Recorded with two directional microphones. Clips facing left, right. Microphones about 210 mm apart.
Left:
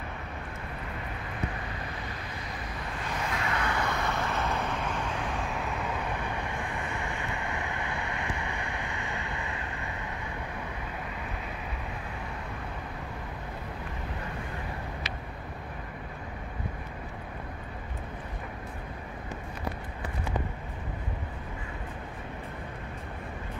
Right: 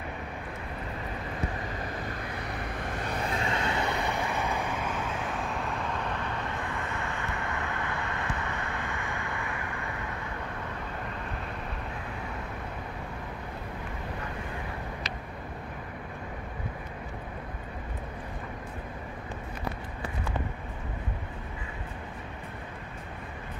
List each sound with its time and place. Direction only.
3.3 s vehicle: 30° right (ahead or behind); by 4.7 s 15° right (ahead or behind)
4.7 s vehicle: centre (ahead or behind)
6.3 s vehicle: 15° left (ahead or behind)